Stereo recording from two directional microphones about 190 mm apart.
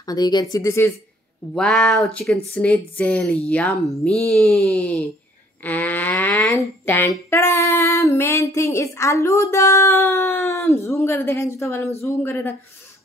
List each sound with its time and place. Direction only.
0.0 s speech: 20° left (ahead or behind)